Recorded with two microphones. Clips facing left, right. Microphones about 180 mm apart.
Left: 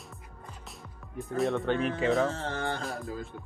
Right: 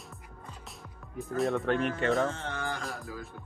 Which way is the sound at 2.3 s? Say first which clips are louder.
Left 3 dB; 35° left (ahead or behind).